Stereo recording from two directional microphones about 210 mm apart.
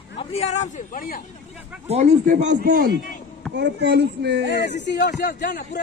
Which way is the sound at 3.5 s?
55° right (ahead or behind).